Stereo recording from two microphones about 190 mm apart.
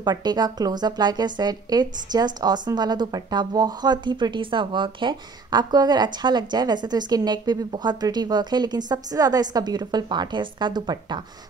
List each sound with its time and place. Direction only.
0.0 s speech: 20° right (ahead or behind)